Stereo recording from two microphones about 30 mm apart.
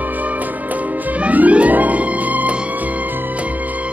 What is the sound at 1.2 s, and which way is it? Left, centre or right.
Music, right.